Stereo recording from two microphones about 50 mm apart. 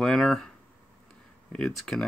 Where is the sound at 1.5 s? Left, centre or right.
Centre.